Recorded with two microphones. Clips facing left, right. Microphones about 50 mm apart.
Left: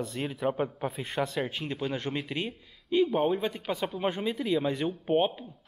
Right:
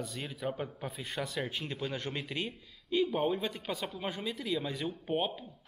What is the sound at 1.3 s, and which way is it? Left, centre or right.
Speech, left.